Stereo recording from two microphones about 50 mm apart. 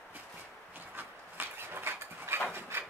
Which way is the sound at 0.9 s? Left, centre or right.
Right.